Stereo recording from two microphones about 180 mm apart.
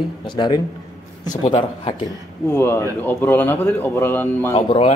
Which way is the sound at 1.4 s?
35° left (ahead or behind).